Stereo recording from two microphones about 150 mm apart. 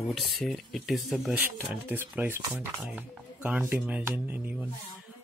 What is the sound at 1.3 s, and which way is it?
Speech, 10° right (ahead or behind).